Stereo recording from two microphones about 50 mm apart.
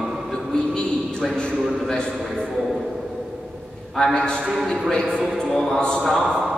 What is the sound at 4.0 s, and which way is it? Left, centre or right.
A man's voice, centre.